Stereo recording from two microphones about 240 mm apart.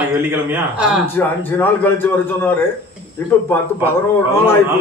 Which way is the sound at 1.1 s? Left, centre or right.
Centre.